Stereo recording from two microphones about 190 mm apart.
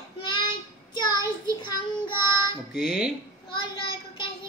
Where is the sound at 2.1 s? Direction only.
10° right (ahead or behind).